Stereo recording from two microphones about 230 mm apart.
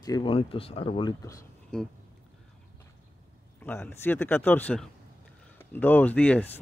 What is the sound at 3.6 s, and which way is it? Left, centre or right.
Speech, centre.